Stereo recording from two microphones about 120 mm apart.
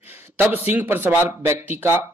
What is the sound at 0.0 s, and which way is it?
A man's voice, 15° right (ahead or behind).